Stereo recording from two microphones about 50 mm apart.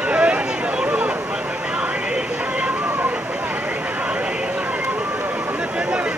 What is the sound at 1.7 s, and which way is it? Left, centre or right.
Music, right.